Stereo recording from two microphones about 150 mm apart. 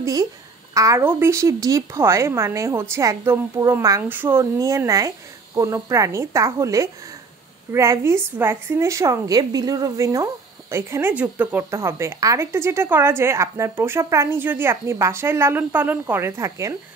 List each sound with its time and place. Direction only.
0.0 s a child's voice: 20° right (ahead or behind)